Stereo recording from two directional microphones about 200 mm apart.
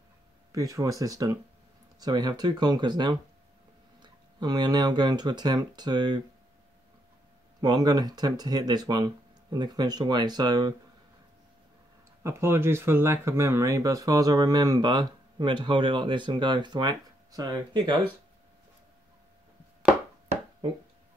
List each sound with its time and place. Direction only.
0.5 s speech: 15° right (ahead or behind)
7.6 s speech: 20° right (ahead or behind)
12.2 s speech: 15° right (ahead or behind)